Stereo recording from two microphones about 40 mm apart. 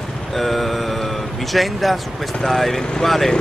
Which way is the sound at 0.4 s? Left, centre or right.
Centre.